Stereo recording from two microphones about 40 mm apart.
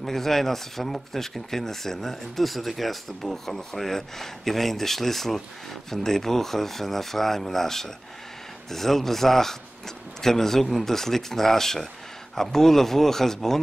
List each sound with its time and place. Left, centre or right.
0.0 s speech: centre